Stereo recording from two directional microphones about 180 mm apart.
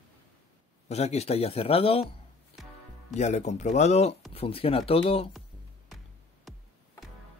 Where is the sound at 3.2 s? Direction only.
40° left (ahead or behind).